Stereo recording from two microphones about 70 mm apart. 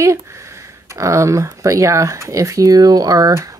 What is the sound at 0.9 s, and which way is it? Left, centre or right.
Speech, right.